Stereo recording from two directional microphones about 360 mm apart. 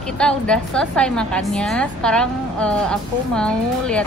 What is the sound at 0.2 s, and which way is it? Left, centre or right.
A woman's voice, centre.